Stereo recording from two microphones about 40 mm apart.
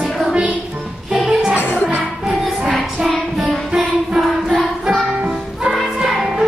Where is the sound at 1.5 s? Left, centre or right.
Left.